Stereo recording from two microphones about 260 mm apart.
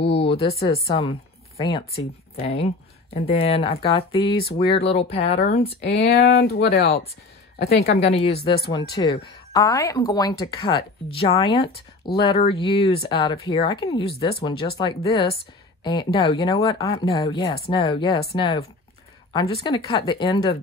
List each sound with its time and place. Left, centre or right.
0.0 s speech: left
5.8 s speech: left
8.0 s speech: left